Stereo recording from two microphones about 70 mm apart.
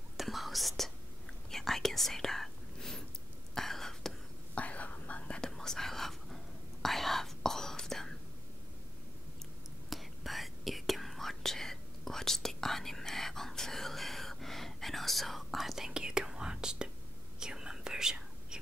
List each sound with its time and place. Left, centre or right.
0.2 s whispering: centre
4.6 s whispering: left
5.5 s whispering: centre
9.8 s whispering: centre